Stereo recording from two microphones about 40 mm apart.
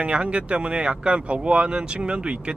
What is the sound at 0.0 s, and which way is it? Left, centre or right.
Speech, right.